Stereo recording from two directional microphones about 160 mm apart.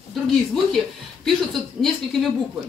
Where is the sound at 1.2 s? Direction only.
Centre (ahead or behind).